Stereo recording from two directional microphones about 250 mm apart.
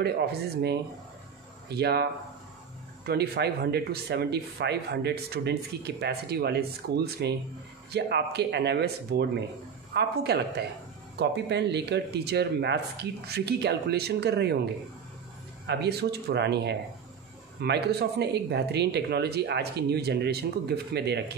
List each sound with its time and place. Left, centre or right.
0.0 s speech: right
3.1 s speech: right
15.6 s speech: right